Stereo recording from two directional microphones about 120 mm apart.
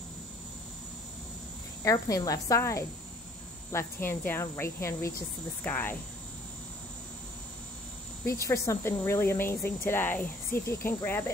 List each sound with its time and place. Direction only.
1.8 s speech: 30° left (ahead or behind)
5.6 s cricket: 15° left (ahead or behind)
8.3 s speech: 25° left (ahead or behind)